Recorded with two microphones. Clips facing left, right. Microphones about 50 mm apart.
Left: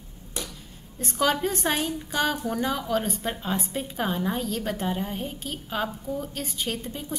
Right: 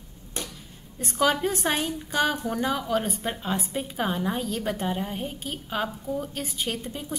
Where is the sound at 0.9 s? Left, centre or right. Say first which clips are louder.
Right 1 dB; centre.